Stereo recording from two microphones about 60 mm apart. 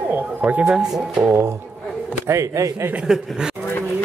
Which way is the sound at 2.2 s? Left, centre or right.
Right.